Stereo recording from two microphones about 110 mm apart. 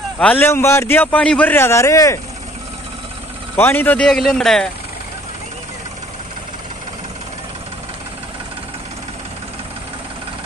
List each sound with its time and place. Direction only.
0.2 s a man's voice: 15° left (ahead or behind)
3.5 s a man's voice: 20° left (ahead or behind)